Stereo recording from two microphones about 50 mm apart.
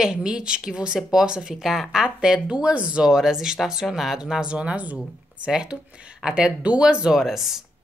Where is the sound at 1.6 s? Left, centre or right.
Centre.